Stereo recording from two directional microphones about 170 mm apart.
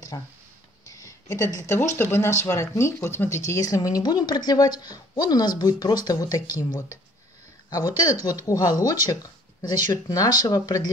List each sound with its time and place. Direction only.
0.1 s speech: 20° left (ahead or behind)
9.1 s a sound: 20° left (ahead or behind)
10.0 s speech: 20° left (ahead or behind)